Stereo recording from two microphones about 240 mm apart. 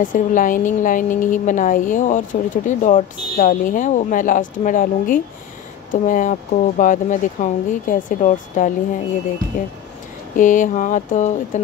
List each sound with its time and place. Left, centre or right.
0.0 s a woman's voice: left